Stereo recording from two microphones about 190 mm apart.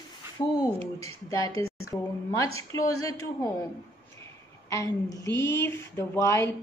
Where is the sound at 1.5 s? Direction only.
90° left.